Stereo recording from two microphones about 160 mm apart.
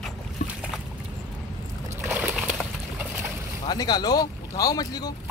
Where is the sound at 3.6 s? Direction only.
25° left (ahead or behind).